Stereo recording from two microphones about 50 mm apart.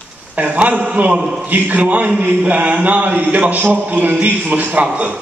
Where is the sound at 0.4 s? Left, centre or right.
Right.